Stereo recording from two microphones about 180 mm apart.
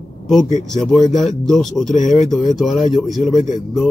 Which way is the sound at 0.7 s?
Centre (ahead or behind).